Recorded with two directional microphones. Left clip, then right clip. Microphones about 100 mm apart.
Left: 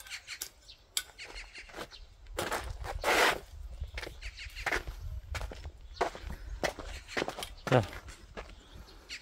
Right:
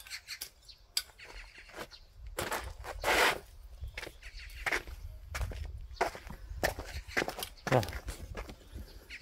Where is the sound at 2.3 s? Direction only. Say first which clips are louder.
Left 2 dB; centre (ahead or behind).